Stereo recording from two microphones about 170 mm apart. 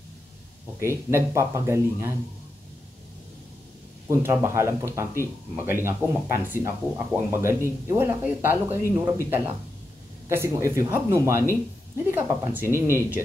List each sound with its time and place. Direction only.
0.7 s speech: 15° right (ahead or behind)
4.1 s speech: 15° right (ahead or behind)